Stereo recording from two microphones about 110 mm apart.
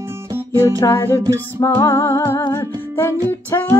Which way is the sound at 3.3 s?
20° left (ahead or behind).